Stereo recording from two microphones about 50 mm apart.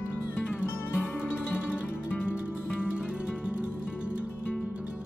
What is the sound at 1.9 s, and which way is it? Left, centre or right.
Music, left.